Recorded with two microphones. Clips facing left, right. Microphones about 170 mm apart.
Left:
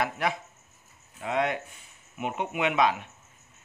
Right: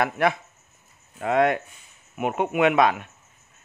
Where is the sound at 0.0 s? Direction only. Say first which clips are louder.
Right 6 dB; 60° right (ahead or behind).